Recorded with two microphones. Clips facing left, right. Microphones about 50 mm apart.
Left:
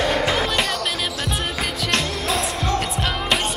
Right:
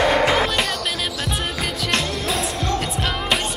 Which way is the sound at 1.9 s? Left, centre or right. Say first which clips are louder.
Left 1 dB; centre.